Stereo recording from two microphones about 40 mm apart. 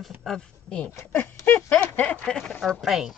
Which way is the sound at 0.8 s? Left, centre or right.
Left.